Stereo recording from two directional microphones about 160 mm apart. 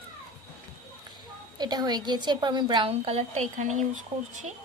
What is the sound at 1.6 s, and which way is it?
A woman's voice, 25° right (ahead or behind).